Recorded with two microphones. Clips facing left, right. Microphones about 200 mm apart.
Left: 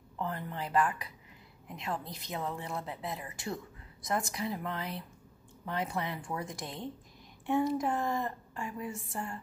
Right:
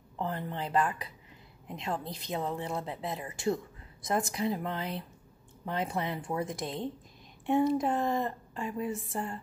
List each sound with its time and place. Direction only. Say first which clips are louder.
0.2 s a woman's voice: right 2 dB; 25° right (ahead or behind)